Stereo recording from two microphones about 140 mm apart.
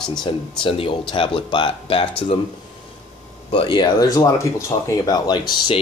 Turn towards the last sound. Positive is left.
turn(degrees=30)  # may be behind; listen again after turning